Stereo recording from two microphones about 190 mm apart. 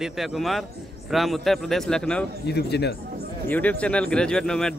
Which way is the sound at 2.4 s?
60° left (ahead or behind).